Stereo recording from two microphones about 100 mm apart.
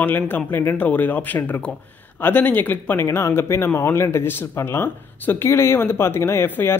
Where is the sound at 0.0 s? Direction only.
20° left (ahead or behind).